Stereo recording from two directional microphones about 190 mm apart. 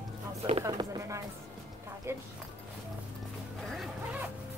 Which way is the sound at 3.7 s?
Centre (ahead or behind).